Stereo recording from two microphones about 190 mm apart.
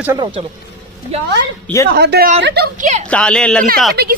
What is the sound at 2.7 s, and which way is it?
Speech, 35° right (ahead or behind).